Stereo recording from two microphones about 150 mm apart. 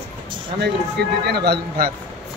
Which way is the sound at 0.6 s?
90° right.